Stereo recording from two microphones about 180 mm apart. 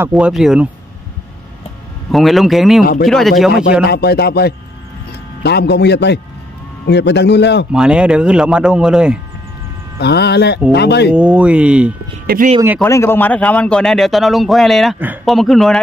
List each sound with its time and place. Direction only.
0.0 s a man's voice: 5° right (ahead or behind)
2.0 s a man's voice: centre (ahead or behind)
2.8 s speech: 55° left (ahead or behind)
3.1 s a man's voice: centre (ahead or behind)
3.8 s a man's voice: 60° left (ahead or behind)
7.7 s a man's voice: 5° right (ahead or behind)
9.9 s a man's voice: 65° left (ahead or behind)
11.1 s speech: 5° right (ahead or behind)
12.8 s a man's voice: 15° left (ahead or behind)